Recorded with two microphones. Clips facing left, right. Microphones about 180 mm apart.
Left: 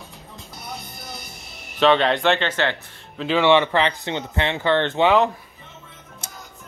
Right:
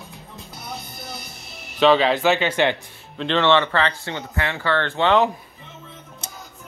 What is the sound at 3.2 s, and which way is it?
Speech, 10° left (ahead or behind).